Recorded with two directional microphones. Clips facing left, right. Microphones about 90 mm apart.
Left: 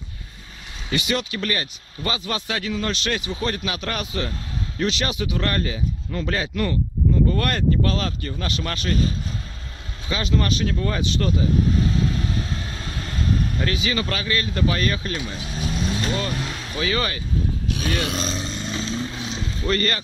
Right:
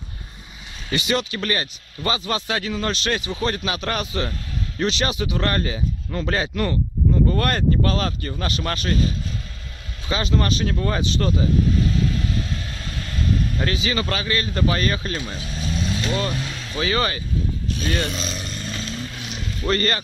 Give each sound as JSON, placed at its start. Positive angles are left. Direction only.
{"t": 0.9, "sound": "speech", "side_deg": -35}
{"t": 10.0, "sound": "speech", "side_deg": -35}
{"t": 11.8, "sound": "vehicle", "side_deg": 25}
{"t": 13.6, "sound": "speech", "side_deg": -30}
{"t": 15.1, "sound": "speech", "side_deg": 10}
{"t": 16.3, "sound": "vehicle", "side_deg": 15}
{"t": 16.8, "sound": "speech", "side_deg": -30}
{"t": 17.7, "sound": "a sound", "side_deg": 65}
{"t": 18.1, "sound": "vehicle", "side_deg": 35}
{"t": 19.6, "sound": "speech", "side_deg": -30}